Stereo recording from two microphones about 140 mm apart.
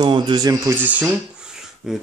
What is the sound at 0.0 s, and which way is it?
Speech, 30° right (ahead or behind).